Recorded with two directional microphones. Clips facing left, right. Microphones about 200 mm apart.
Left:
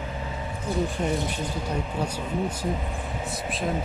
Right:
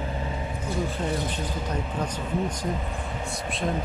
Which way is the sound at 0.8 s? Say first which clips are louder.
Left 1 dB; 10° left (ahead or behind).